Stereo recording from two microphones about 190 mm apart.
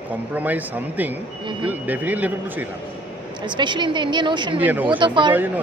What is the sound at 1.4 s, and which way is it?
Speech, 25° right (ahead or behind).